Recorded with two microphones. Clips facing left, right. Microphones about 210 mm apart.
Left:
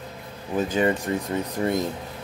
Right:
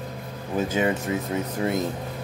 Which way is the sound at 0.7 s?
5° right (ahead or behind).